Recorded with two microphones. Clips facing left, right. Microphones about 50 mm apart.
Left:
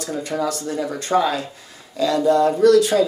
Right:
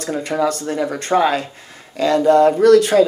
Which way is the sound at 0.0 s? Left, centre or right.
Right.